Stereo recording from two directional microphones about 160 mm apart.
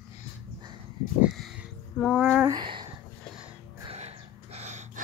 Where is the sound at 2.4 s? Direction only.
30° right (ahead or behind).